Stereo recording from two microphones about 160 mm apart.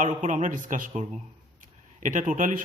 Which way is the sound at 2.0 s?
55° right (ahead or behind).